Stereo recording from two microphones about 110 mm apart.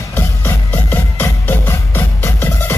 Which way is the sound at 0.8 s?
15° left (ahead or behind).